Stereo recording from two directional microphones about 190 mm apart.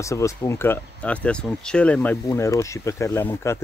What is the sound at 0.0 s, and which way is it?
Speech, 15° left (ahead or behind).